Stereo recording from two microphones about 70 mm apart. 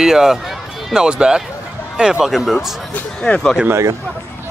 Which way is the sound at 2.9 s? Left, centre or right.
Centre.